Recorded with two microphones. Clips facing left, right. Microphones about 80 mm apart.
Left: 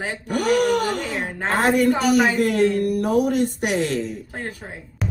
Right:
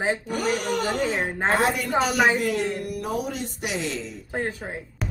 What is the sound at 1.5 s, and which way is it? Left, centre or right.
A woman's voice, left.